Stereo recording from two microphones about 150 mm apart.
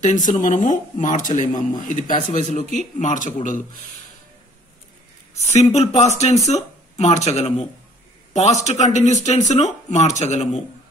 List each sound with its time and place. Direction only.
0.0 s speech: 55° left (ahead or behind)
5.5 s speech: 50° left (ahead or behind)